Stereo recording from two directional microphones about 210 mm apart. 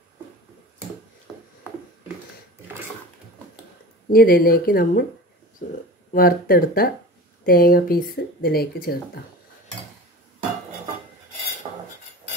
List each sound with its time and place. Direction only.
4.1 s speech: 45° left (ahead or behind)
5.6 s a sound: 40° left (ahead or behind)
6.1 s speech: 45° left (ahead or behind)